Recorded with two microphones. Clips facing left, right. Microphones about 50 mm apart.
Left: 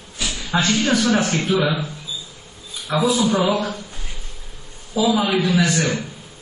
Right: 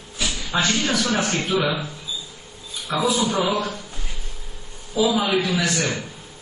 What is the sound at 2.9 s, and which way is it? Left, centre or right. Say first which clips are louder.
Speech: left 3 dB; centre.